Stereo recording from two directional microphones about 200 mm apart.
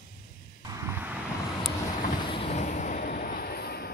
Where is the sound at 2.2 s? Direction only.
30° left (ahead or behind); by 3.9 s 50° left (ahead or behind).